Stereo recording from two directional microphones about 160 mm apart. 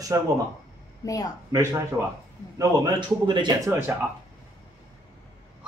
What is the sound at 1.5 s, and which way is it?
A man's voice, 20° right (ahead or behind).